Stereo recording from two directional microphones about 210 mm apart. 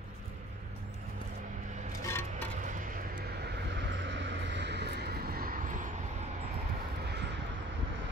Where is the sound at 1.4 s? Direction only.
35° right (ahead or behind).